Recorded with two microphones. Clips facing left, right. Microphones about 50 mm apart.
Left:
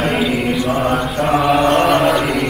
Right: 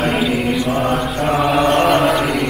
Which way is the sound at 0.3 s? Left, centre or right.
Left.